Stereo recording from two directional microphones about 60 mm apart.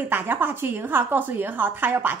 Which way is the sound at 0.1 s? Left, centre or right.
Right.